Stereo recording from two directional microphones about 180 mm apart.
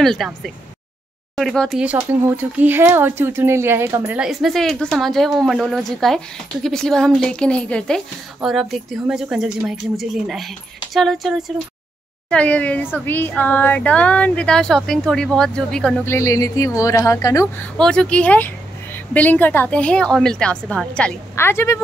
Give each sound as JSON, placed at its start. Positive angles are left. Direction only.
{"t": 0.0, "sound": "a woman's voice", "side_deg": 0}
{"t": 4.2, "sound": "a woman's voice", "side_deg": 0}
{"t": 16.1, "sound": "a woman's voice", "side_deg": 15}
{"t": 17.7, "sound": "a woman's voice", "side_deg": 5}